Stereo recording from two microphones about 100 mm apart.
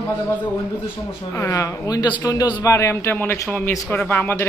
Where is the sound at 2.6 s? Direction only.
30° left (ahead or behind).